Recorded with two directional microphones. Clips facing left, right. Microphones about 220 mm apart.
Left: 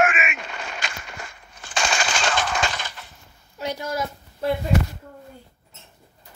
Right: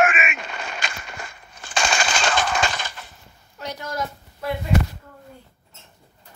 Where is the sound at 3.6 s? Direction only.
10° left (ahead or behind).